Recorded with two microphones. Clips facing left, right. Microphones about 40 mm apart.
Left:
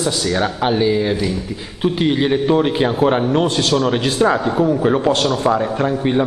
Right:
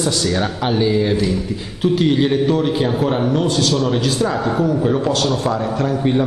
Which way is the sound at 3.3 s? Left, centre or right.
Left.